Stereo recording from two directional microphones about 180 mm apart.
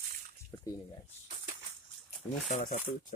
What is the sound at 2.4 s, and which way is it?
Speech, 45° left (ahead or behind).